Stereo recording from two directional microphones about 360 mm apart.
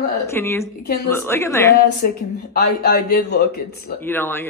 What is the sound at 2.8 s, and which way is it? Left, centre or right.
Speech, left.